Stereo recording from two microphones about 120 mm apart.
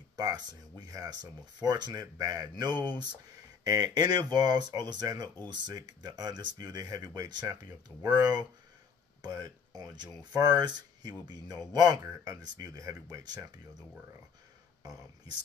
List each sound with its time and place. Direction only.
0.1 s speech: 35° right (ahead or behind)